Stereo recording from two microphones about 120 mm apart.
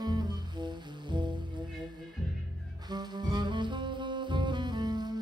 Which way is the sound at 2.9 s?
35° right (ahead or behind).